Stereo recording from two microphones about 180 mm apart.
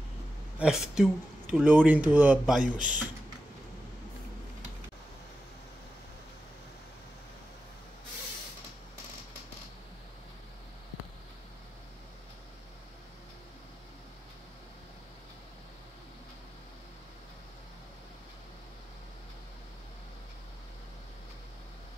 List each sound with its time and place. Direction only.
0.6 s speech: 5° right (ahead or behind)
2.6 s speech: 45° right (ahead or behind)